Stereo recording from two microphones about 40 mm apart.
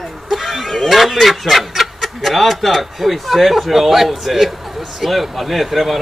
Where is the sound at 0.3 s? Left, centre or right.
Centre.